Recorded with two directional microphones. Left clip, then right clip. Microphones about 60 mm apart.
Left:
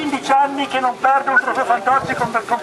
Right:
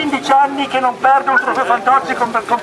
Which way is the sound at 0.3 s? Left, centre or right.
Centre.